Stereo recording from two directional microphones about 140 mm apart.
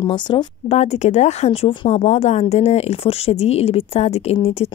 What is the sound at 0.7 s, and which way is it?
Speech, 50° left (ahead or behind).